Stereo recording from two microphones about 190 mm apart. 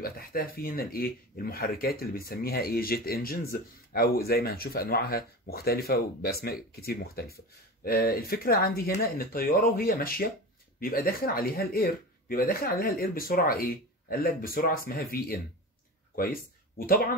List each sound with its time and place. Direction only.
0.0 s speech: 50° left (ahead or behind)